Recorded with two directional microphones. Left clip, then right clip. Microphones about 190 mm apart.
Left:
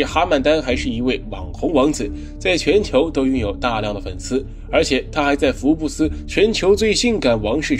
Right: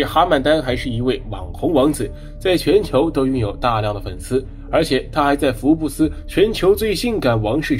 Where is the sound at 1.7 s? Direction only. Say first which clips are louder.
Right 1 dB; 15° left (ahead or behind).